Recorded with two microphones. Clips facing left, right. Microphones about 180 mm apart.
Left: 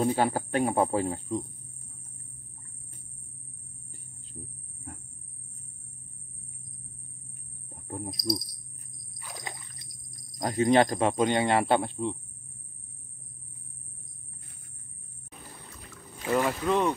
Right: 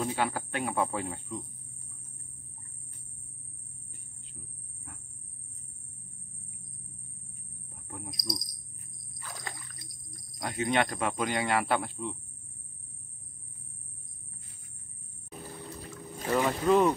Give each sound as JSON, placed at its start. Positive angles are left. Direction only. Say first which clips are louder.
{"t": 0.0, "sound": "speech", "louder": "left 5 dB", "side_deg": 35}
{"t": 4.4, "sound": "cricket", "louder": "left 8 dB", "side_deg": 35}
{"t": 7.9, "sound": "a sound", "louder": "left 7 dB", "side_deg": 25}
{"t": 9.2, "sound": "wild animals", "louder": "left 1 dB", "side_deg": 20}
{"t": 10.4, "sound": "speech", "louder": "left 7 dB", "side_deg": 35}
{"t": 16.3, "sound": "speech", "louder": "right 1 dB", "side_deg": 0}